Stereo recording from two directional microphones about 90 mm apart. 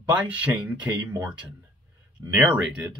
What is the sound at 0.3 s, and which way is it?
Speech, 15° right (ahead or behind).